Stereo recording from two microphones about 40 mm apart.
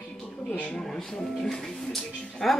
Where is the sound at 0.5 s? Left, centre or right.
Left.